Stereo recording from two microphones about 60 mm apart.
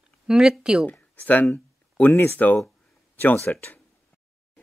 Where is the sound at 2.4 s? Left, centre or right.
Left.